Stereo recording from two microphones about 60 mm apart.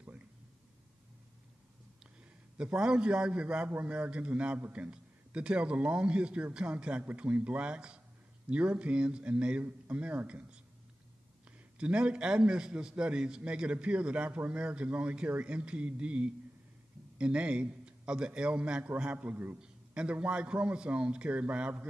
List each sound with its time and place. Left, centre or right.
2.5 s a man's voice: centre
11.8 s a man's voice: centre